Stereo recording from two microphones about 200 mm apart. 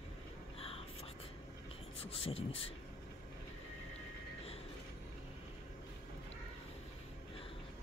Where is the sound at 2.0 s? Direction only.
30° left (ahead or behind).